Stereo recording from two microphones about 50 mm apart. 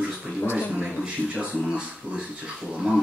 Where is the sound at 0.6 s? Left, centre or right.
Centre.